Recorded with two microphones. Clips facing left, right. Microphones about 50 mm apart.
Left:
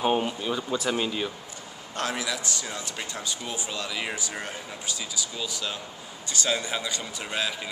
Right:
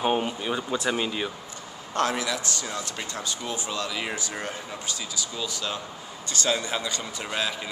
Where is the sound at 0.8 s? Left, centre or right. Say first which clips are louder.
Even; centre.